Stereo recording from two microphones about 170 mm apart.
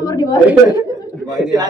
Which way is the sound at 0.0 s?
20° left (ahead or behind).